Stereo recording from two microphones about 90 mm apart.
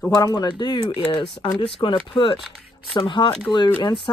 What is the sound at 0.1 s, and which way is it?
Speech, 45° left (ahead or behind).